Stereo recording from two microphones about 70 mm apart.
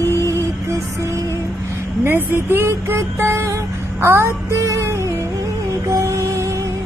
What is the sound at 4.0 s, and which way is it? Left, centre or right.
Music, right.